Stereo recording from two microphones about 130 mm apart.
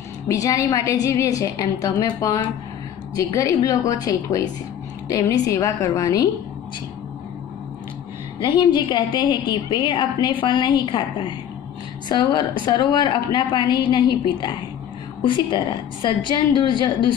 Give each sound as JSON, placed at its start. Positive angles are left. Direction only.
{"t": 0.3, "sound": "a woman's voice", "side_deg": 25}
{"t": 8.4, "sound": "a woman's voice", "side_deg": 35}